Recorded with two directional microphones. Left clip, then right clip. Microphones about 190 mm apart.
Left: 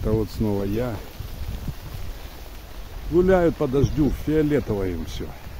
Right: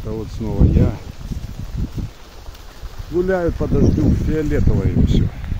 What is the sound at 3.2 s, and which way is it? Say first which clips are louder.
Speech: left 1 dB; 15° left (ahead or behind).